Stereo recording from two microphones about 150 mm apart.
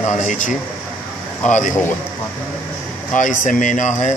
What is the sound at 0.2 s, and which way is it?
Speech, 60° left (ahead or behind).